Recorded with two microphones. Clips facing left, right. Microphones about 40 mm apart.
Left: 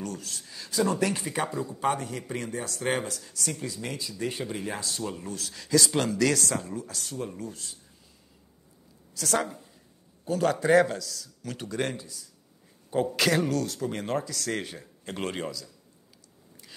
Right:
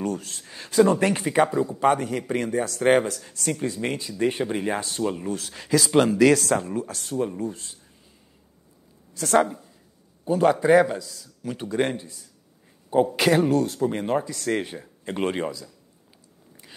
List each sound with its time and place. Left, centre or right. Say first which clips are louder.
0.0 s speech: right 7 dB; right
6.5 s speech: right 8 dB; right
9.1 s speech: right 8 dB; right
10.2 s a man's voice: right 6 dB; centre
12.9 s speech: right 5 dB; centre